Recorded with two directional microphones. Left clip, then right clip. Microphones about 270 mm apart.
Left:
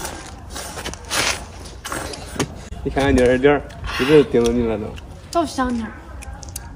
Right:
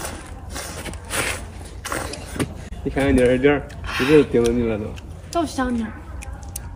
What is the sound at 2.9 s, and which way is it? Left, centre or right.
Speech, centre.